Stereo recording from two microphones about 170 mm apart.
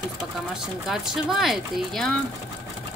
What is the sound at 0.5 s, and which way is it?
Speech, centre (ahead or behind).